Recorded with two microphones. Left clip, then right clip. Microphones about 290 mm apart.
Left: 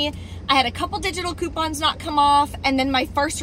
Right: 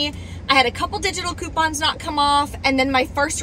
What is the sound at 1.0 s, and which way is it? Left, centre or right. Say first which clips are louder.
Speech: right 1 dB; centre.